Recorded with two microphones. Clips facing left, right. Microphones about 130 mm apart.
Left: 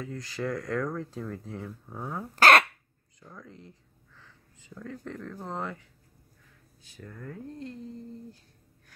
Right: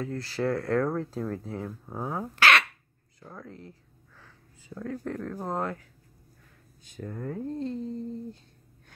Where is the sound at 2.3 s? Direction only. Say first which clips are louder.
Left 4 dB; 45° left (ahead or behind).